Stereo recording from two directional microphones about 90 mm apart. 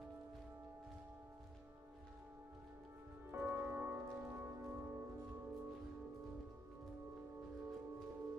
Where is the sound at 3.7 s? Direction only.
25° right (ahead or behind).